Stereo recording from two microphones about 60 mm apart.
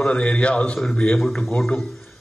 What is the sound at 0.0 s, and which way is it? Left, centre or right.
A man's voice, centre.